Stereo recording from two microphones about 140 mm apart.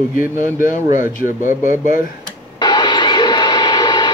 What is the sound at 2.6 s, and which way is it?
Radio, 30° left (ahead or behind).